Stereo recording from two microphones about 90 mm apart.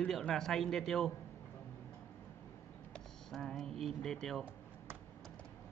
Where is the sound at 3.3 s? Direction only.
5° left (ahead or behind).